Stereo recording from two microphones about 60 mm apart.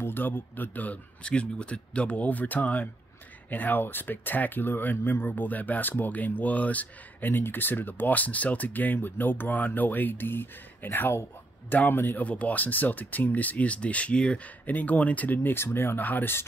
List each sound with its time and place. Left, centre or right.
0.0 s speech: left
1.2 s speech: centre; by 12.3 s left
12.3 s speech: left
14.7 s speech: left
16.0 s speech: left